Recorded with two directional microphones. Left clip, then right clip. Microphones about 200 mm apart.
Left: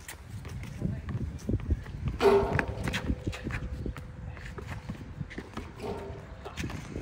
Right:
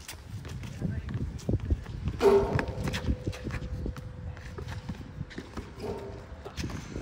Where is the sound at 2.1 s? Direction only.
5° right (ahead or behind).